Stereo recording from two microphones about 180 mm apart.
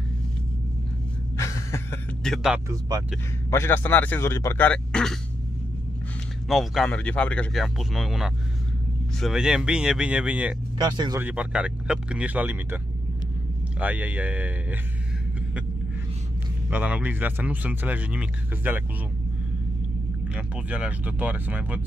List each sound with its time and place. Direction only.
1.3 s a sound: 15° left (ahead or behind)
2.2 s speech: centre (ahead or behind)
3.4 s speech: 15° left (ahead or behind)
6.5 s speech: centre (ahead or behind)
10.8 s speech: 25° right (ahead or behind)
11.1 s speech: 10° right (ahead or behind)
16.7 s speech: 10° right (ahead or behind)
20.3 s speech: 5° right (ahead or behind)